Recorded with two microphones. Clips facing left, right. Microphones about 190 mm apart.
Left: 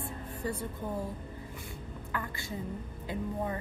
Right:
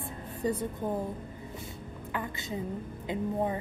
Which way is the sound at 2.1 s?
20° right (ahead or behind).